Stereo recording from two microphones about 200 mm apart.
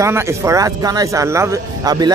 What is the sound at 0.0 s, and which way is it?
Speech, 15° right (ahead or behind).